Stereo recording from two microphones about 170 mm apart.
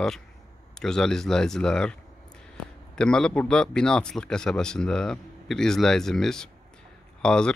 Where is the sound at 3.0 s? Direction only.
5° left (ahead or behind).